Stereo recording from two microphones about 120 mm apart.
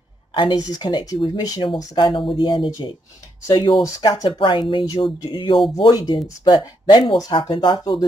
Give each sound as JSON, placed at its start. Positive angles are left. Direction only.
{"t": 0.3, "sound": "a sound", "side_deg": 45}
{"t": 0.6, "sound": "speech", "side_deg": 30}
{"t": 4.8, "sound": "speech", "side_deg": 35}